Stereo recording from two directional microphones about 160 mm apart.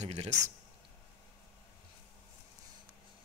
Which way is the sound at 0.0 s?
45° right (ahead or behind).